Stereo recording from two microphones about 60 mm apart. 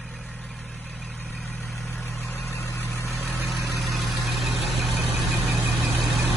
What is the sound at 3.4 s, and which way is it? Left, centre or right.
Vehicle, centre.